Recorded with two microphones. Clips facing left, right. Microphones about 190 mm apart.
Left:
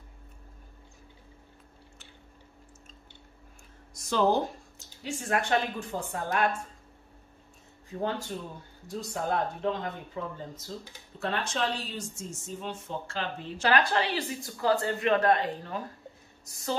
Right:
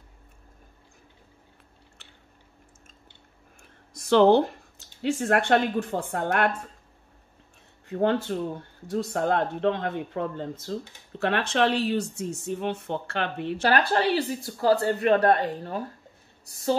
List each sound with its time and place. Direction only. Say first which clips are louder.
4.0 s speech: right 8 dB; 70° right (ahead or behind)
7.9 s speech: right 8 dB; 65° right (ahead or behind)
13.6 s speech: right 2 dB; 40° right (ahead or behind)